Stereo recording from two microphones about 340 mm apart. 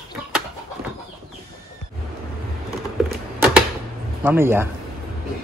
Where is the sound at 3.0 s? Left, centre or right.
Centre.